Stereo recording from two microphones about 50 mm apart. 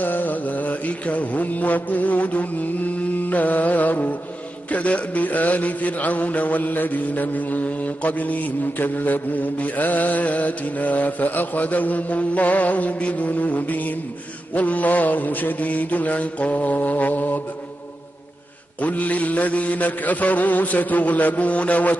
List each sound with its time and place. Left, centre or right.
0.0 s mantra: left
18.8 s mantra: left